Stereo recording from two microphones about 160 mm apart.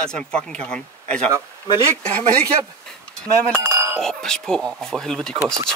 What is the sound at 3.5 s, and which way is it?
Chink, 20° right (ahead or behind).